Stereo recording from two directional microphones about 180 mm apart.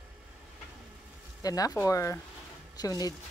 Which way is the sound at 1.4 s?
20° left (ahead or behind).